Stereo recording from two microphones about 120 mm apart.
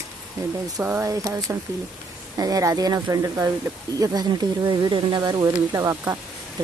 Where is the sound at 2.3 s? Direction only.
30° right (ahead or behind).